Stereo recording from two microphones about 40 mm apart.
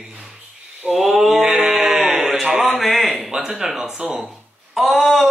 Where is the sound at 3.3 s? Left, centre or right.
Centre.